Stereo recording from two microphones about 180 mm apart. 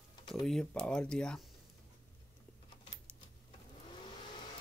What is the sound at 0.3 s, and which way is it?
Speech, centre (ahead or behind).